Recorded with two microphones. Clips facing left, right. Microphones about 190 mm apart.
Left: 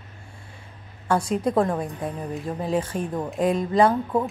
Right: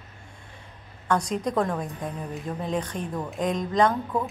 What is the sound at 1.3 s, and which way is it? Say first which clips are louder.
A woman's voice: left 4 dB; 5° left (ahead or behind).